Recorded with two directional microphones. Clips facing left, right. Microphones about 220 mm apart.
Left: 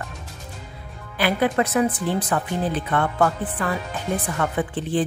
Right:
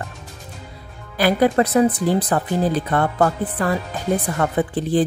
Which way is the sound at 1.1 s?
40° right (ahead or behind).